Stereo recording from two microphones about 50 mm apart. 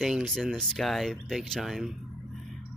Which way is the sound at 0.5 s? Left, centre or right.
Centre.